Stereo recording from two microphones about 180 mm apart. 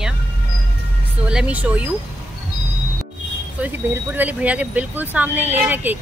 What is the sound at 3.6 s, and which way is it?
Speech, 10° right (ahead or behind).